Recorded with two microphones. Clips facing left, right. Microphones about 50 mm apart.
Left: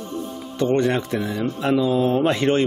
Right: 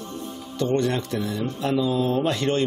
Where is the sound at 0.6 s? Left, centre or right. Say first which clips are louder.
Left 3 dB; left.